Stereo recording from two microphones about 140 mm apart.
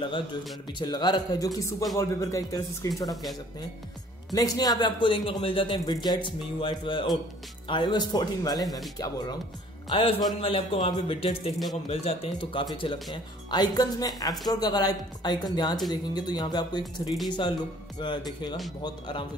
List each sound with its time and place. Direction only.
0.7 s speech: 30° left (ahead or behind)
4.3 s a man's voice: 25° left (ahead or behind)
9.9 s a man's voice: 45° left (ahead or behind)